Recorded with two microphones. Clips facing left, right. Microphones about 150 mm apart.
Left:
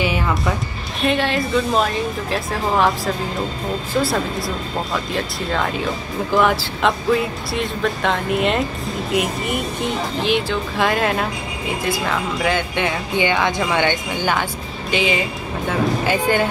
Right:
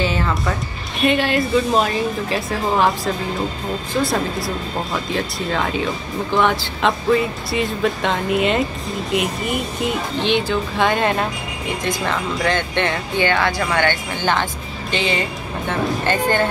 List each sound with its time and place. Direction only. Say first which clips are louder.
1.0 s speech: right 2 dB; centre (ahead or behind)
4.0 s speech: even; centre (ahead or behind)